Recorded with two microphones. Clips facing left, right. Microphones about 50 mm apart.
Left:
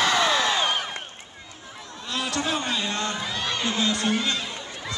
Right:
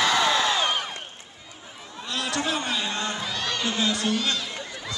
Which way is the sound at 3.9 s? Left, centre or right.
Left.